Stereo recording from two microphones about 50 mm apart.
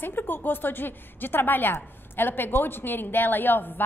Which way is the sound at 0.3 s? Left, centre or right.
Left.